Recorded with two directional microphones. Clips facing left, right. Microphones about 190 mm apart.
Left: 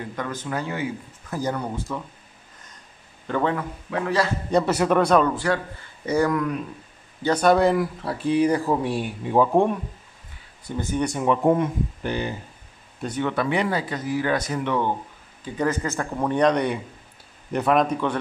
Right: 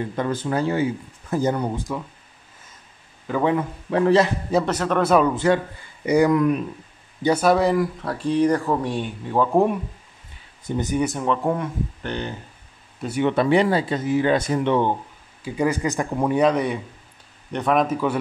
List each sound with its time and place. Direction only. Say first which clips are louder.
0.1 s speech: right 3 dB; 30° right (ahead or behind)
3.3 s speech: right 2 dB; 5° right (ahead or behind)
3.9 s speech: right 8 dB; 30° right (ahead or behind)
4.6 s speech: left 2 dB; 10° left (ahead or behind)
5.0 s speech: right 4 dB; 5° right (ahead or behind)
5.3 s speech: right 5 dB; 20° right (ahead or behind)
7.2 s speech: even; 5° right (ahead or behind)
9.5 s speech: right 1 dB; 5° right (ahead or behind)
11.0 s speech: left 1 dB; centre (ahead or behind)
11.2 s speech: left 3 dB; 20° left (ahead or behind)
12.0 s speech: left 3 dB; 5° left (ahead or behind)
13.2 s speech: right 6 dB; 25° right (ahead or behind)
15.4 s speech: right 3 dB; 10° right (ahead or behind)